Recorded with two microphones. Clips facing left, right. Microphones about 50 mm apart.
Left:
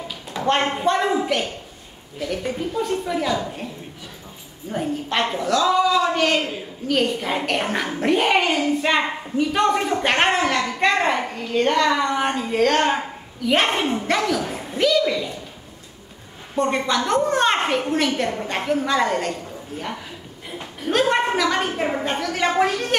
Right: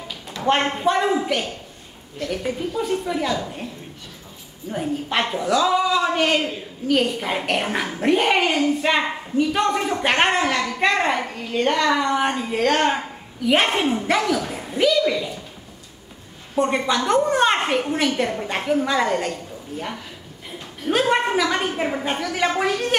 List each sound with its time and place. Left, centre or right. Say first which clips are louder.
0.3 s a sound: even; left
0.8 s a woman's voice: right 1 dB; centre
4.6 s a woman's voice: even; centre
6.4 s a woman's voice: right 1 dB; centre
16.5 s a woman's voice: even; centre
20.8 s a woman's voice: even; centre